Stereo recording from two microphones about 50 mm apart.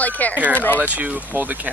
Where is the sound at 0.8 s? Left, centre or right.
Right.